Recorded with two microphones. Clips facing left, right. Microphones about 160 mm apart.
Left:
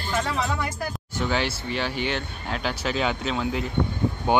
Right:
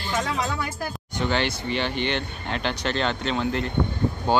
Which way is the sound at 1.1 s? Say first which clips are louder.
Right 1 dB; 5° left (ahead or behind).